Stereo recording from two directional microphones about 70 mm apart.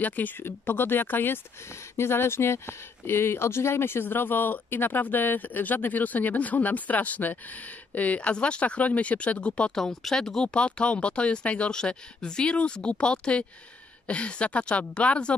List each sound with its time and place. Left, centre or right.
0.0 s speech: left
9.8 s speech: centre